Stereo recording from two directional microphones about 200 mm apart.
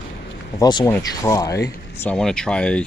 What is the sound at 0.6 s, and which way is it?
Speech, 20° left (ahead or behind).